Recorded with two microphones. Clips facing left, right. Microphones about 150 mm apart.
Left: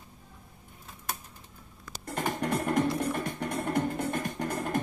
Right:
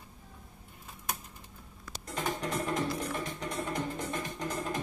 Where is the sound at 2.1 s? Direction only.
55° left (ahead or behind).